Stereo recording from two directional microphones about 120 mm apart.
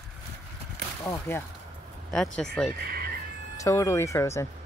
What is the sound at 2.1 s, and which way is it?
Speech, 5° left (ahead or behind).